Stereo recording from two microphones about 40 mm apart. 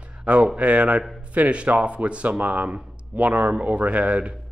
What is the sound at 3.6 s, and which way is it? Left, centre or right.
Speech, right.